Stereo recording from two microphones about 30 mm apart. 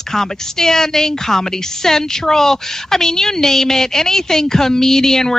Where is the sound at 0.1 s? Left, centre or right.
Centre.